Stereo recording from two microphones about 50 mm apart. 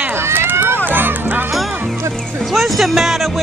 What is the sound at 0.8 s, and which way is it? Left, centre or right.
Music, right.